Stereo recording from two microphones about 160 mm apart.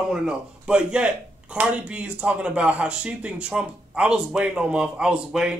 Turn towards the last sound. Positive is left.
turn(degrees=-5)  # may be behind; listen again after turning